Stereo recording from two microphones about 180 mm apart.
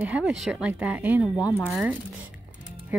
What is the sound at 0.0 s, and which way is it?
A woman's voice, 5° right (ahead or behind).